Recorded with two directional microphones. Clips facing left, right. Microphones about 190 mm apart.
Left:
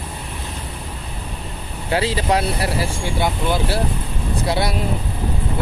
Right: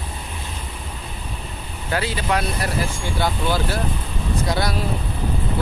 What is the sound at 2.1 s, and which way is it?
Speech, 30° left (ahead or behind).